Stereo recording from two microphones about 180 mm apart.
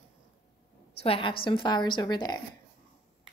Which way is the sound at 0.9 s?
30° left (ahead or behind).